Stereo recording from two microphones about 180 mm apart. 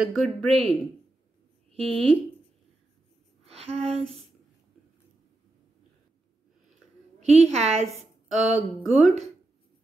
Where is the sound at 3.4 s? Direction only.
35° right (ahead or behind).